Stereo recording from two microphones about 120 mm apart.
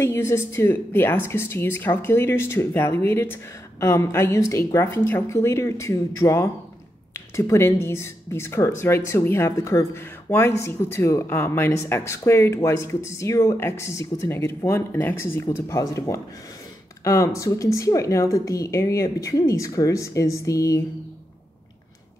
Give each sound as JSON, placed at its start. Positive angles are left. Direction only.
{"t": 0.0, "sound": "speech", "side_deg": 20}